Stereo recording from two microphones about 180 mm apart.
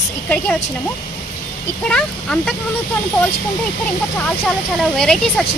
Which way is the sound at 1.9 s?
5° left (ahead or behind).